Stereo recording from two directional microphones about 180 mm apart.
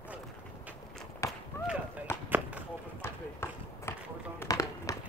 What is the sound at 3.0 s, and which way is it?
Run, 15° left (ahead or behind).